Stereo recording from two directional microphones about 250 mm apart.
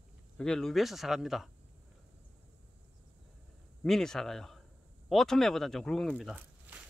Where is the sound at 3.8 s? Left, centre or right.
Centre.